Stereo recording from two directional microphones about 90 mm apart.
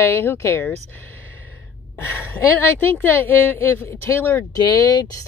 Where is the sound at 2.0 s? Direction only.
25° left (ahead or behind).